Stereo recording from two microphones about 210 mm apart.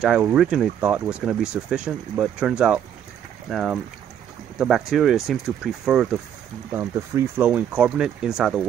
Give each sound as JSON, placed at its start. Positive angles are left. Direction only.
{"t": 0.0, "sound": "speech", "side_deg": -5}